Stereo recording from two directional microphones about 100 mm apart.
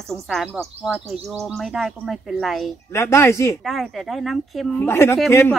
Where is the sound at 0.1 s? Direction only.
5° left (ahead or behind).